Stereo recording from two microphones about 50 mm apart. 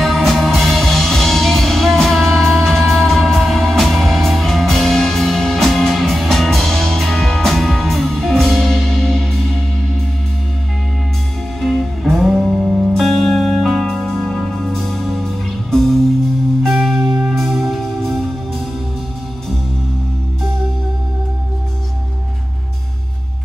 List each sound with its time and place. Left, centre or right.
0.0 s music: centre
11.6 s music: centre